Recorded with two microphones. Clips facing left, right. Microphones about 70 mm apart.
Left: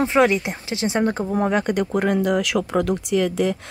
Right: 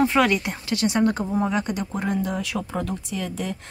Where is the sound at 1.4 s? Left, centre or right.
Left.